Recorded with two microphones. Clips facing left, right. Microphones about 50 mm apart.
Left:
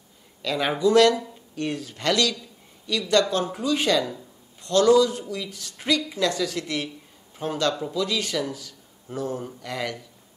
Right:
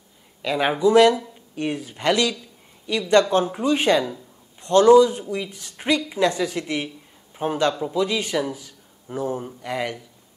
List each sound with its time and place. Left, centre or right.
0.4 s a woman's voice: centre